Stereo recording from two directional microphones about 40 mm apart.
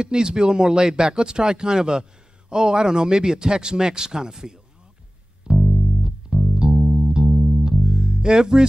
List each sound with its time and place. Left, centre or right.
0.0 s a man's voice: centre
5.6 s music: centre
6.5 s bass guitar: centre
7.3 s bass guitar: centre
7.6 s music: right